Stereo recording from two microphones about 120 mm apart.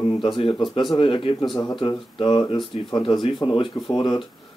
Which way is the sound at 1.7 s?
35° left (ahead or behind).